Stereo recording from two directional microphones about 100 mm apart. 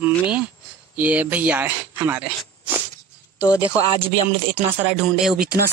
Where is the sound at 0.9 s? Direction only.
15° right (ahead or behind).